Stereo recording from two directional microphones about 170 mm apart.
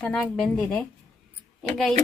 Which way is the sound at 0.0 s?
5° left (ahead or behind).